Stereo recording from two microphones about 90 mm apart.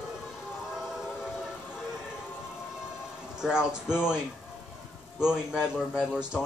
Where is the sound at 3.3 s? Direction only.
5° right (ahead or behind).